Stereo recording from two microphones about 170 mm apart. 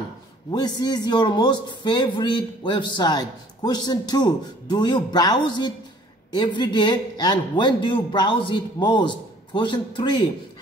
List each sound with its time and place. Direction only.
0.5 s a man's voice: 25° left (ahead or behind)